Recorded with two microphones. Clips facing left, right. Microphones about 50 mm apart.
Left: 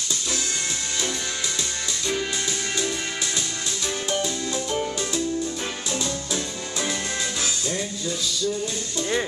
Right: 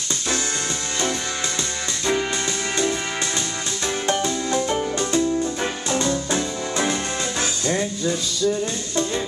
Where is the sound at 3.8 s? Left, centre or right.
Right.